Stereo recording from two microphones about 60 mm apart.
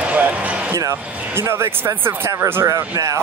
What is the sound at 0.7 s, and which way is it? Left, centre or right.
Speech, right.